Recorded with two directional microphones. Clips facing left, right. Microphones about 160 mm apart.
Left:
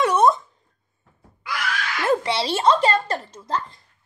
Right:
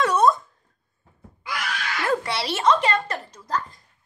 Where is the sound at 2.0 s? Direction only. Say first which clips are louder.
Left 4 dB; 25° left (ahead or behind).